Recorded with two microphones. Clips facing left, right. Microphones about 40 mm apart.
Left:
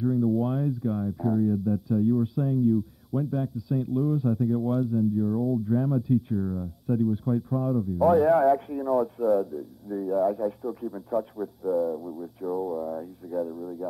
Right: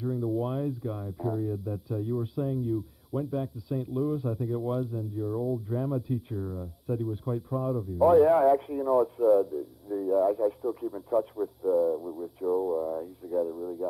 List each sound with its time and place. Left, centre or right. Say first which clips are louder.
0.0 s a sound: left 6 dB; centre
0.3 s speech: left 4 dB; centre
9.6 s speech: even; centre